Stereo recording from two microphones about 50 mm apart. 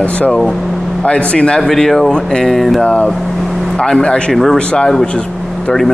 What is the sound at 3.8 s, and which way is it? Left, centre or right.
Speech, centre.